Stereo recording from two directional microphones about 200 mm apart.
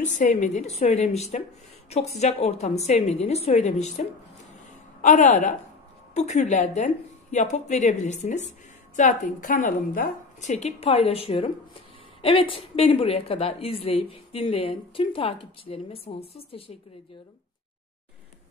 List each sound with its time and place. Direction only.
0.0 s a woman's voice: 35° left (ahead or behind)
5.0 s a woman's voice: 40° left (ahead or behind)